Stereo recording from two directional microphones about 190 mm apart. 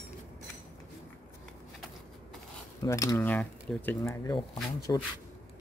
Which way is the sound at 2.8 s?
20° left (ahead or behind).